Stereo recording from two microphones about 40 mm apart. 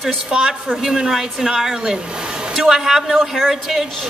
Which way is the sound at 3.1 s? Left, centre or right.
Centre.